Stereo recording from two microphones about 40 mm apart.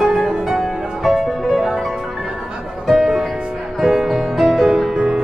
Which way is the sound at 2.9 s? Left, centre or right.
Centre.